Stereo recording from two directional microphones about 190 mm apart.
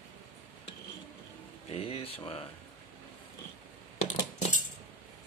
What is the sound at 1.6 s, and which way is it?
Speech, 30° left (ahead or behind).